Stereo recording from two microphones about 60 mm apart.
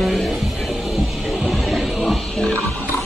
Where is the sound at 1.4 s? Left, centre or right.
Centre.